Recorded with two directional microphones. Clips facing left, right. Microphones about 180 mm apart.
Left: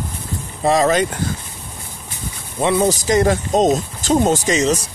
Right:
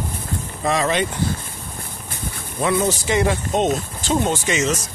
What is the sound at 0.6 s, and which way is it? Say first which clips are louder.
Speech: left 5 dB; 40° left (ahead or behind).